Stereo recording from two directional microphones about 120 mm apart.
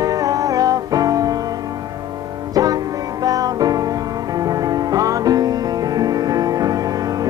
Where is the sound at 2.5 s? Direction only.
30° right (ahead or behind).